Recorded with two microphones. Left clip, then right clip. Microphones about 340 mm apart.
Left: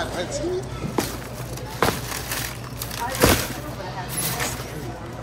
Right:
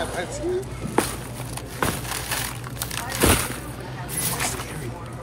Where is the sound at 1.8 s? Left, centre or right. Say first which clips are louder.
Left 4 dB; centre.